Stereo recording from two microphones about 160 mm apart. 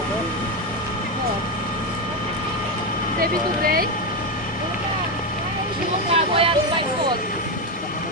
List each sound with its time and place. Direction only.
6.1 s speech: 35° right (ahead or behind)